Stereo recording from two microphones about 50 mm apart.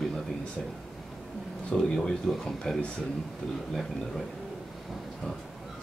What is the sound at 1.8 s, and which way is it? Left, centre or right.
Speech, centre.